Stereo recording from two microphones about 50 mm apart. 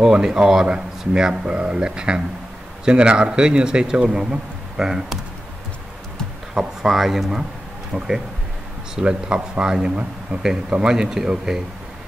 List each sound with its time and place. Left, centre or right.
0.0 s speech: centre
6.5 s speech: centre
7.9 s speech: centre
8.9 s speech: centre